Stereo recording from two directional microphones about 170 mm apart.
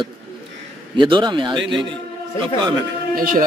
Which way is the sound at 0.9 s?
30° right (ahead or behind).